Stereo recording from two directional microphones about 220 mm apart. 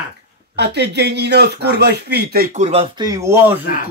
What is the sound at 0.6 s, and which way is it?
Speech, 50° right (ahead or behind).